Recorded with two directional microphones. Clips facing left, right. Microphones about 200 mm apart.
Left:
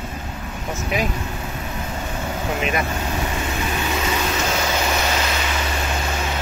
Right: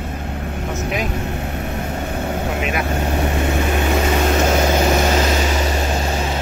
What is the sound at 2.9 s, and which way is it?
Vehicle, 55° right (ahead or behind).